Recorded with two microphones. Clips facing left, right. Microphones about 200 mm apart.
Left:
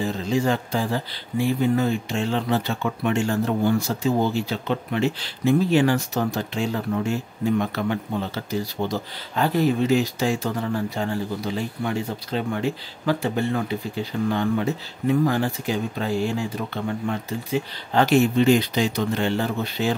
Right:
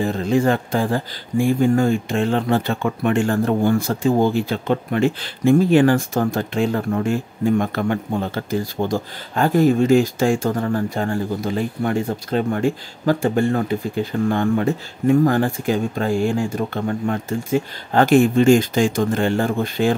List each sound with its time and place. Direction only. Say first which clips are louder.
0.0 s speech: right 5 dB; 55° right (ahead or behind)